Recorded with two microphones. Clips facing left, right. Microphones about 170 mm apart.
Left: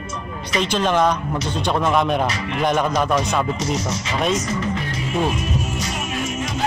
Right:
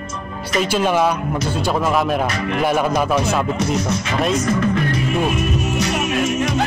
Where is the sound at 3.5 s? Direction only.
55° right (ahead or behind).